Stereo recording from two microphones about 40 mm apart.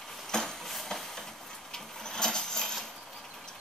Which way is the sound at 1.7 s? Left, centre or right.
Centre.